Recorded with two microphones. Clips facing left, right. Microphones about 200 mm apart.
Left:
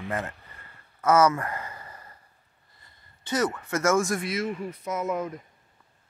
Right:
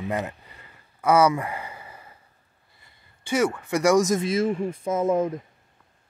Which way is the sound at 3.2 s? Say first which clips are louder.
Right 3 dB; 10° right (ahead or behind).